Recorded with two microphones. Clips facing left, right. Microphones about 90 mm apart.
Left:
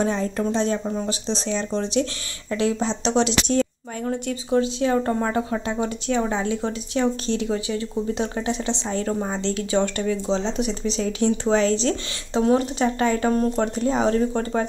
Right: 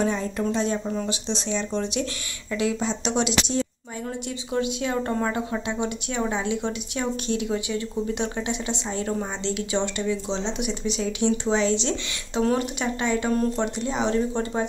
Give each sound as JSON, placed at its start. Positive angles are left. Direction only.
{"t": 0.0, "sound": "speech", "side_deg": 35}